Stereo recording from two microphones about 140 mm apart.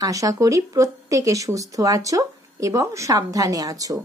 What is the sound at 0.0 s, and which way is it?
Speech, 25° right (ahead or behind).